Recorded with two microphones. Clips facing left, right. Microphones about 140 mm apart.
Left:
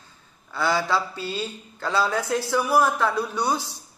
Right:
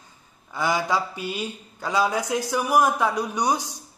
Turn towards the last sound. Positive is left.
turn(degrees=-15)  # may be behind; listen again after turning